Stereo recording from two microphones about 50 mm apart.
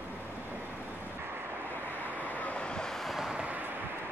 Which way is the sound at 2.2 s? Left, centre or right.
Left.